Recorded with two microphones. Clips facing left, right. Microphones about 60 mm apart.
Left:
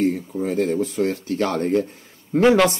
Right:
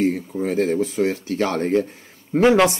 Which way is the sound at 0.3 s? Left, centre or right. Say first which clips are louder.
Right 1 dB; right.